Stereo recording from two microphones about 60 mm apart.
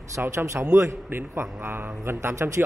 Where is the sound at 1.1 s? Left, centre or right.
Right.